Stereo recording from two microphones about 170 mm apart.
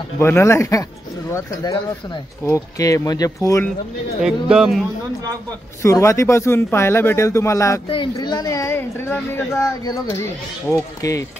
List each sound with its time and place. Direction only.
0.2 s speech: 15° left (ahead or behind)
4.2 s speech: 5° right (ahead or behind)
5.8 s speech: 15° left (ahead or behind)
7.9 s speech: 25° left (ahead or behind)